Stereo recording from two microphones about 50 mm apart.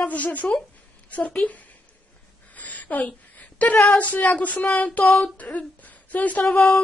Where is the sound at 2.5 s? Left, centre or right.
Left.